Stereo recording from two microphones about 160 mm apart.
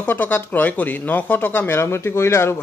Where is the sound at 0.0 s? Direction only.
10° left (ahead or behind).